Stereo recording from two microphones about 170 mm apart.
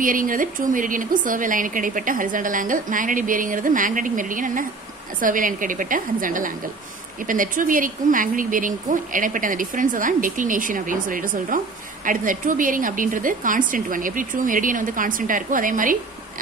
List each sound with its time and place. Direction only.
0.0 s a woman's voice: 55° right (ahead or behind)